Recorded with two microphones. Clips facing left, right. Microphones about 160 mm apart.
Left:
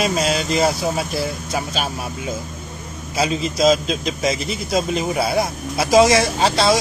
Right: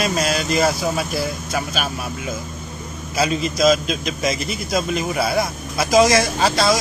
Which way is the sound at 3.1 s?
25° left (ahead or behind).